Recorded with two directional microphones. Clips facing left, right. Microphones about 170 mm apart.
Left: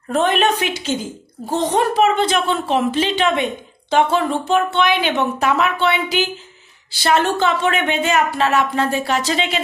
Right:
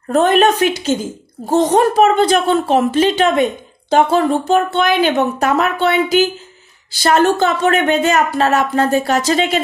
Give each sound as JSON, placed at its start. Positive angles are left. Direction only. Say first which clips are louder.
{"t": 0.1, "sound": "a woman's voice", "louder": "right 5 dB", "side_deg": -45}